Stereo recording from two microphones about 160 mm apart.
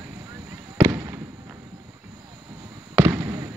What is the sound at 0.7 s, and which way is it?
Fireworks, 20° right (ahead or behind).